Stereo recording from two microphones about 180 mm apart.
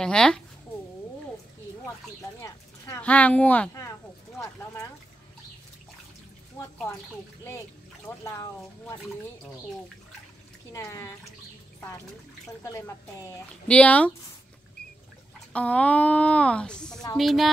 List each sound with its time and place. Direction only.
0.0 s speech: 5° left (ahead or behind)
2.4 s a woman's voice: 10° left (ahead or behind)
8.2 s a woman's voice: 20° left (ahead or behind)
10.7 s a woman's voice: 15° left (ahead or behind)
12.6 s a woman's voice: 15° left (ahead or behind)
15.5 s a woman's voice: 5° left (ahead or behind)